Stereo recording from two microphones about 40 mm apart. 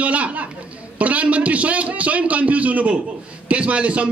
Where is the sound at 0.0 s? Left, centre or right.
Right.